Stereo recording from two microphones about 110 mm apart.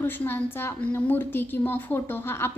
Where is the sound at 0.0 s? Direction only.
20° left (ahead or behind).